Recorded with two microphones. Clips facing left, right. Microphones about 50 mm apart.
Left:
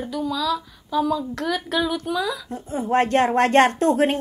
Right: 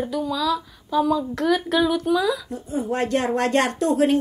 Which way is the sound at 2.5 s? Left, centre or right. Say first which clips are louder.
Left 2 dB; left.